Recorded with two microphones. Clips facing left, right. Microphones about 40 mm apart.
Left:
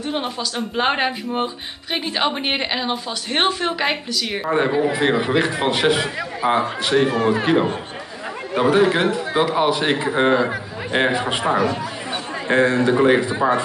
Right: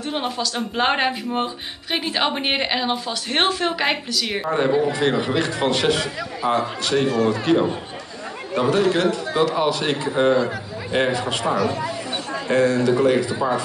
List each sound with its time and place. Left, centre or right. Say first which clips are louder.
0.0 s speech: even; centre
4.5 s a man's voice: left 1 dB; centre
8.5 s a man's voice: left 2 dB; left